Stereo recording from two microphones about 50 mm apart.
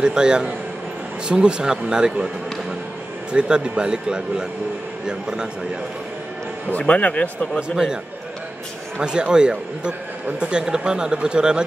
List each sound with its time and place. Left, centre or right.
0.0 s speech: centre
6.8 s speech: left
7.7 s speech: centre